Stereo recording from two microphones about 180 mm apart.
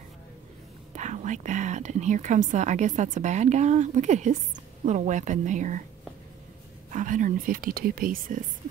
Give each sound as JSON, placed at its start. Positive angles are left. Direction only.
{"t": 0.9, "sound": "speech", "side_deg": -40}
{"t": 6.9, "sound": "speech", "side_deg": -45}